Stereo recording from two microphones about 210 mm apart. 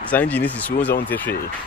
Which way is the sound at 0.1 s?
5° left (ahead or behind).